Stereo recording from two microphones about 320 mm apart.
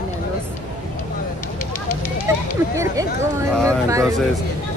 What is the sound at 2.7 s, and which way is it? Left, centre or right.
Speech, centre.